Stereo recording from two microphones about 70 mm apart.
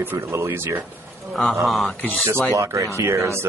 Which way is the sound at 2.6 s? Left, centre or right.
Right.